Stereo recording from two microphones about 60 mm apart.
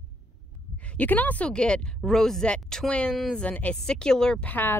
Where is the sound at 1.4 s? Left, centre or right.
Centre.